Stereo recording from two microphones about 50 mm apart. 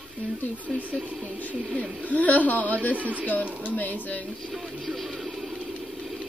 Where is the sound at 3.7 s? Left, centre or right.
Left.